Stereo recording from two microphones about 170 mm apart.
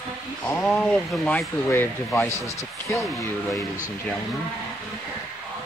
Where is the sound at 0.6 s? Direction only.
10° left (ahead or behind).